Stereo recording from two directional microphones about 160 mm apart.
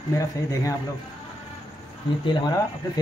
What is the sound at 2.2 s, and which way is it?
Speech, 30° left (ahead or behind).